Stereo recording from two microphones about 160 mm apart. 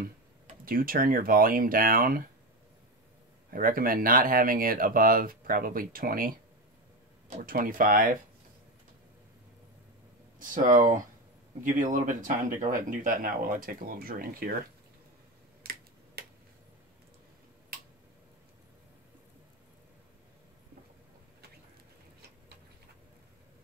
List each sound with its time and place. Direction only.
0.0 s speech: 60° right (ahead or behind)
3.4 s speech: 65° right (ahead or behind)
10.5 s speech: 55° right (ahead or behind)
16.2 s a sound: 75° right (ahead or behind)